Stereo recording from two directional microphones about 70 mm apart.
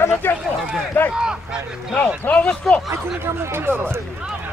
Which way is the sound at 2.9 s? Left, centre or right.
Right.